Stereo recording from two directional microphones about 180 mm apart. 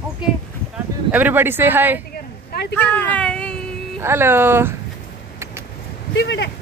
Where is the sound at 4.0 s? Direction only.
15° right (ahead or behind).